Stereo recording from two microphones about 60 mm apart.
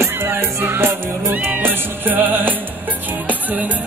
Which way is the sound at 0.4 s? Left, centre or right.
Right.